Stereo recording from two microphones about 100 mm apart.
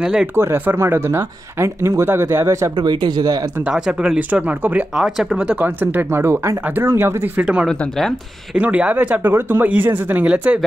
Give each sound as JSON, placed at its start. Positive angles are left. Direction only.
{"t": 0.0, "sound": "speech", "side_deg": -5}
{"t": 0.4, "sound": "speech", "side_deg": -25}
{"t": 2.4, "sound": "speech", "side_deg": -40}
{"t": 3.7, "sound": "speech", "side_deg": -5}
{"t": 6.1, "sound": "speech", "side_deg": -25}
{"t": 8.5, "sound": "speech", "side_deg": -15}